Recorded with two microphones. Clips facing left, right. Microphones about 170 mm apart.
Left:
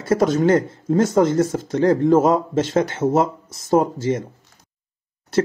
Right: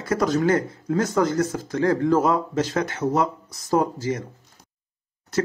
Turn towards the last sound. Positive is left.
turn(degrees=25)  # may be behind; listen again after turning